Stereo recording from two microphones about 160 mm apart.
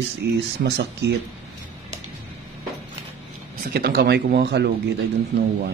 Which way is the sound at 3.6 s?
70° right (ahead or behind).